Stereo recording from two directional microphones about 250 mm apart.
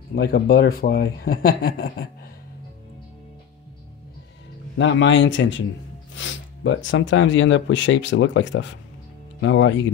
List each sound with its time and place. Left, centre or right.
0.1 s speech: left
4.7 s speech: left